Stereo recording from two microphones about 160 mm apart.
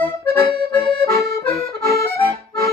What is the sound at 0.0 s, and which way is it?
Accordion, 10° left (ahead or behind).